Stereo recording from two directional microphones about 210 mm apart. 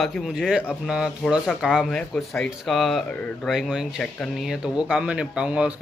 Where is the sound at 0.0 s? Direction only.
Centre (ahead or behind).